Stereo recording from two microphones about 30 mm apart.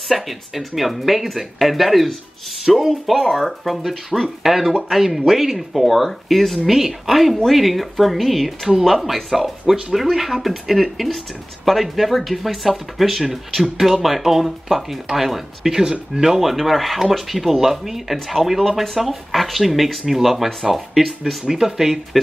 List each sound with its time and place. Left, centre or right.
0.1 s speech: centre
3.6 s speech: centre
15.8 s speech: right
16.3 s speech: centre